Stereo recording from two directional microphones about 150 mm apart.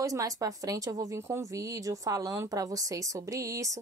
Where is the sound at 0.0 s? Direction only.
20° right (ahead or behind).